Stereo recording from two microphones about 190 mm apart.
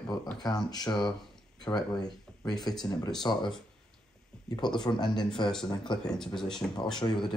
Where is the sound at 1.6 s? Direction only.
20° left (ahead or behind).